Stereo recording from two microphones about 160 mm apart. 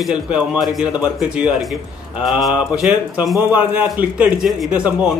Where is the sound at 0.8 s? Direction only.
25° left (ahead or behind).